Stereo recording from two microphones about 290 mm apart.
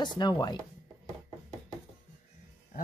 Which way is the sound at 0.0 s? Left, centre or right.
Centre.